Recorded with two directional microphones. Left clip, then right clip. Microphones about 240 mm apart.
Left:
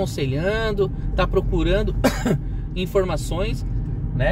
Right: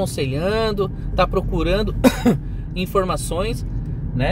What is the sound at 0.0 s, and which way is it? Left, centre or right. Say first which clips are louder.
Speech: right 2 dB; right.